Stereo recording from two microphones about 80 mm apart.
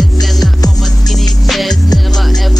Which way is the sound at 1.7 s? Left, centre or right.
Left.